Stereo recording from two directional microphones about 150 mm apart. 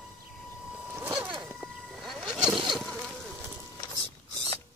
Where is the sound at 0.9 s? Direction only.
15° right (ahead or behind).